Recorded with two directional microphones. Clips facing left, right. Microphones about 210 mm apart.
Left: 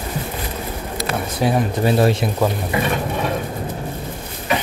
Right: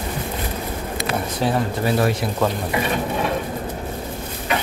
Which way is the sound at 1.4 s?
15° left (ahead or behind).